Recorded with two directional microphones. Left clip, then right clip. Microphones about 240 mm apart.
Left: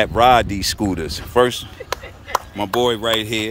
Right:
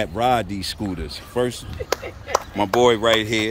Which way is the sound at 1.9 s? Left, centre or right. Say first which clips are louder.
Right 1 dB; right.